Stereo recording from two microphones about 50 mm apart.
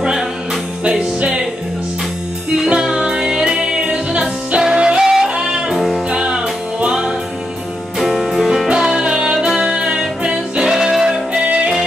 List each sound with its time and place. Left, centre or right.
0.8 s music: centre
2.7 s music: centre
4.2 s music: centre
8.0 s music: centre